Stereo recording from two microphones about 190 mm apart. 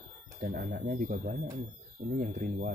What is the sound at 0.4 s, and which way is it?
Speech, 45° right (ahead or behind).